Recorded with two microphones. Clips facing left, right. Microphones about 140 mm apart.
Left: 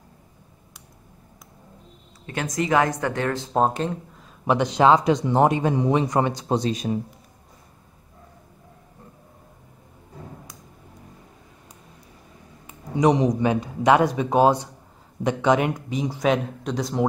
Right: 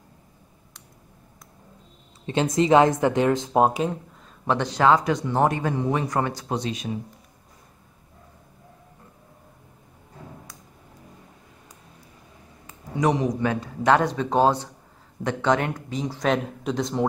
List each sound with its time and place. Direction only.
2.2 s speech: 25° right (ahead or behind); by 4.0 s 5° right (ahead or behind)
4.5 s speech: 15° left (ahead or behind)
6.5 s speech: 35° left (ahead or behind)
12.6 s speech: 20° left (ahead or behind)
16.3 s speech: centre (ahead or behind)